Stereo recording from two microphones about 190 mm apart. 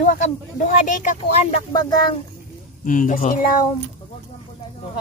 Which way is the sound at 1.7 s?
20° left (ahead or behind).